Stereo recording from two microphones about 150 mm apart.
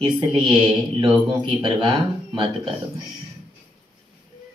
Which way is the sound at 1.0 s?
30° right (ahead or behind).